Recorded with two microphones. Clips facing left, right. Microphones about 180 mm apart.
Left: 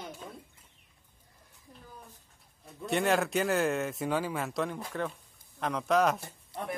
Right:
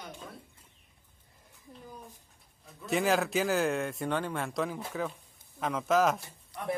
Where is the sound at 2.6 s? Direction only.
Centre (ahead or behind).